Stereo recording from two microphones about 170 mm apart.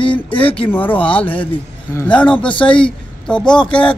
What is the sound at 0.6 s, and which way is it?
Speech, 10° left (ahead or behind).